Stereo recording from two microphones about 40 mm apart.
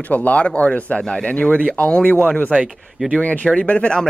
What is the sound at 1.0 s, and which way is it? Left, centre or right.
Speech, left.